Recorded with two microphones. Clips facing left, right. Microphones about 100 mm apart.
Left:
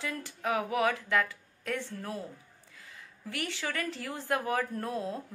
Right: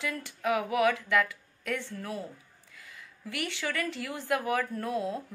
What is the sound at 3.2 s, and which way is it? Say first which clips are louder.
Speech: right 2 dB; 35° left (ahead or behind).